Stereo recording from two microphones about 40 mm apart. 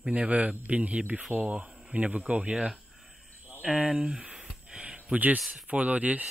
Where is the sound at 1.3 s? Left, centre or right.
Right.